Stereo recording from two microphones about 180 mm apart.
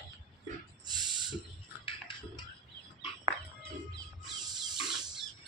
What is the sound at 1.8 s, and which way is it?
Music, 25° left (ahead or behind).